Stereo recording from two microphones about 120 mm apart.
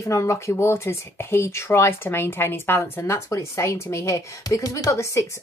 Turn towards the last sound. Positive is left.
turn(degrees=25)  # may be behind; listen again after turning